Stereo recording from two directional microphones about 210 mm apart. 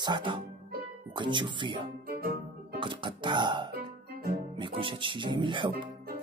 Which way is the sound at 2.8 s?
25° right (ahead or behind).